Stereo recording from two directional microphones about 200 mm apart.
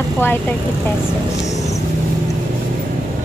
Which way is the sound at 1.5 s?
15° left (ahead or behind).